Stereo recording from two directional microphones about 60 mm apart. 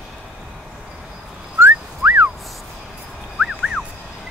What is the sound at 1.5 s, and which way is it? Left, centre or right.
Whistling, right.